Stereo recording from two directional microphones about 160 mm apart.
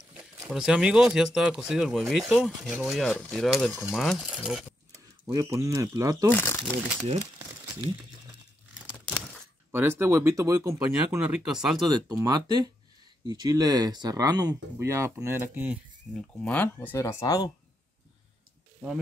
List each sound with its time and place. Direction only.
0.5 s speech: 5° right (ahead or behind)
5.3 s speech: 20° right (ahead or behind)
6.3 s crumpling: 15° left (ahead or behind)
9.0 s a sound: 5° left (ahead or behind)
9.7 s speech: 15° right (ahead or behind)
11.1 s speech: 10° right (ahead or behind)
11.9 s speech: 25° right (ahead or behind); by 16.2 s 5° right (ahead or behind)
16.4 s speech: 10° left (ahead or behind)